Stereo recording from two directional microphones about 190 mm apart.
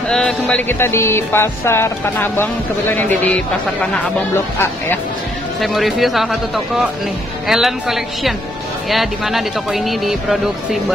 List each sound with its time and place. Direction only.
0.1 s music: 5° left (ahead or behind)
3.8 s speech: 5° left (ahead or behind)
5.6 s speech: centre (ahead or behind)